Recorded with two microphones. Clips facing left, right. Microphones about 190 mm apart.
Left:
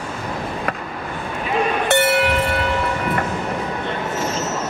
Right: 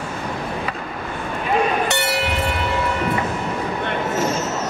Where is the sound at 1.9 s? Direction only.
55° left (ahead or behind).